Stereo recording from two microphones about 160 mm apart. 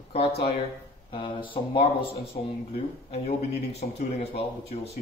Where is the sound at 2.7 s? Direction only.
40° left (ahead or behind).